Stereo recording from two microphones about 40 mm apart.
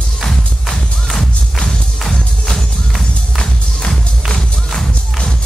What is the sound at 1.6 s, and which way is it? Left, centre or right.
Music, centre.